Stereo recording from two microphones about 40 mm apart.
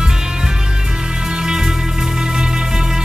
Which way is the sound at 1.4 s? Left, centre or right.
Centre.